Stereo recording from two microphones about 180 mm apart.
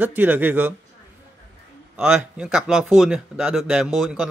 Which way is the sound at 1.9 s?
5° right (ahead or behind).